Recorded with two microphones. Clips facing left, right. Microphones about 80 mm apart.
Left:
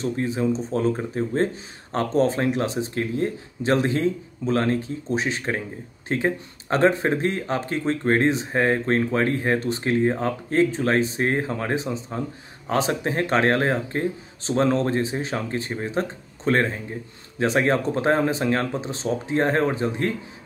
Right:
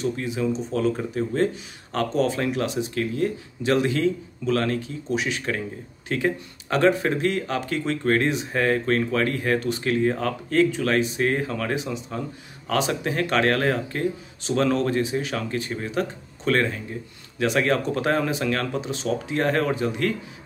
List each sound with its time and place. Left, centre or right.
0.0 s speech: left